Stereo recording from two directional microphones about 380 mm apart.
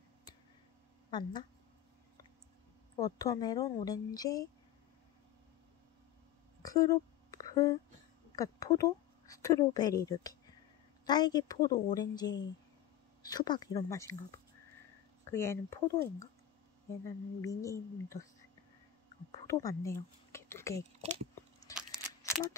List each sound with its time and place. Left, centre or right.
1.1 s speech: centre
3.0 s a woman's voice: centre
6.6 s a sound: centre
8.4 s a woman's voice: centre
15.3 s a woman's voice: centre
17.0 s a woman's voice: centre
19.4 s a sound: centre
20.7 s speech: centre
21.7 s a sound: centre